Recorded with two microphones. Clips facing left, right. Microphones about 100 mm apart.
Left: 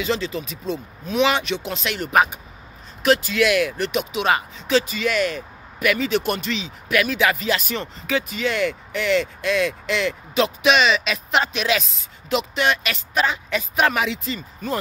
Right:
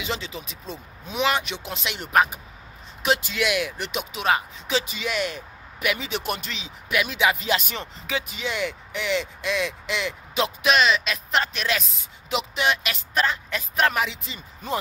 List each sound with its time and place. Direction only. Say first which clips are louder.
0.0 s speech: left 7 dB; 10° right (ahead or behind)
2.0 s speech: left 2 dB; centre (ahead or behind)
3.0 s speech: left 6 dB; 20° right (ahead or behind)
4.1 s speech: even; centre (ahead or behind)
4.6 s speech: left 7 dB; 15° right (ahead or behind)
11.1 s speech: left 3 dB; 5° left (ahead or behind)
12.0 s speech: left 4 dB; 10° right (ahead or behind)
13.1 s a woman's voice: left 3 dB; 5° left (ahead or behind)
14.2 s speech: left 8 dB; 15° right (ahead or behind)